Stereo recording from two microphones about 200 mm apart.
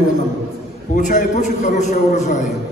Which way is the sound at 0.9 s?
40° left (ahead or behind).